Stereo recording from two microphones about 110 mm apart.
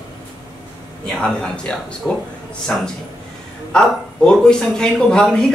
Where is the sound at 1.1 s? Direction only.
5° left (ahead or behind).